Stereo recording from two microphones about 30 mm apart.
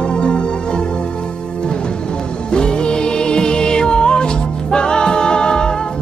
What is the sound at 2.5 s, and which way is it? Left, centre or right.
Music, left.